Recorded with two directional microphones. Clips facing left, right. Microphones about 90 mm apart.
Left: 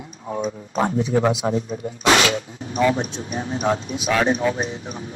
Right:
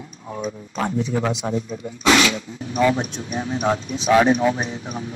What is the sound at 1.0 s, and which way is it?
Speech, 10° left (ahead or behind).